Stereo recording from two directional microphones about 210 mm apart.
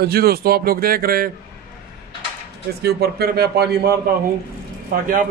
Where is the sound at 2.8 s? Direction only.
50° right (ahead or behind).